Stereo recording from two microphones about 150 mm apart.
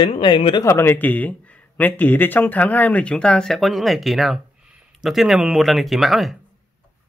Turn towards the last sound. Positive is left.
turn(degrees=0)  # may be behind; listen again after turning